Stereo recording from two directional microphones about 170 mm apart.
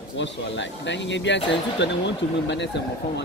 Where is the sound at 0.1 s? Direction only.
90° left.